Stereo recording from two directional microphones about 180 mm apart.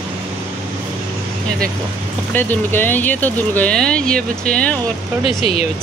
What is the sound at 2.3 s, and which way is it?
Speech, 10° left (ahead or behind).